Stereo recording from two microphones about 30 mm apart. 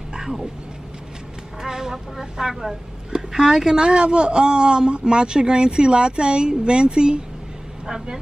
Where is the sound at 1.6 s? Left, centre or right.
Centre.